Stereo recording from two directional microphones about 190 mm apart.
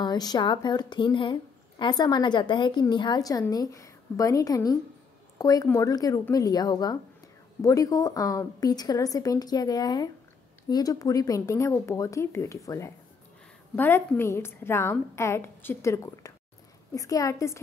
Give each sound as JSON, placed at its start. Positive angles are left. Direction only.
{"t": 0.0, "sound": "a woman's voice", "side_deg": 20}